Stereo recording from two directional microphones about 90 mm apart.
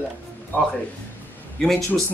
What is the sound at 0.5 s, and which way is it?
Speech, 20° left (ahead or behind).